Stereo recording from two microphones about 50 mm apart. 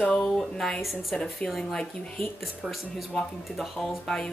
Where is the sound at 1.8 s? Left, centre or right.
Centre.